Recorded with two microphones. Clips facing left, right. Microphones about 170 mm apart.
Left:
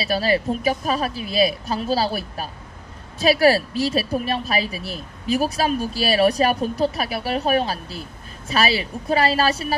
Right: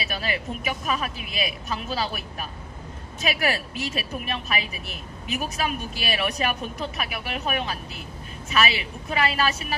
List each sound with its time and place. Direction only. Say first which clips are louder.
0.0 s a woman's voice: left 9 dB; 35° left (ahead or behind)